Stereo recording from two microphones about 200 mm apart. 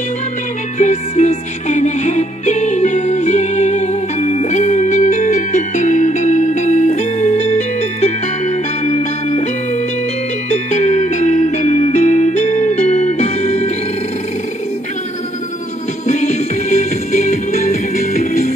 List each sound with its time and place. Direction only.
0.7 s music: 35° left (ahead or behind)
10.7 s music: 35° left (ahead or behind)
16.1 s music: 35° left (ahead or behind)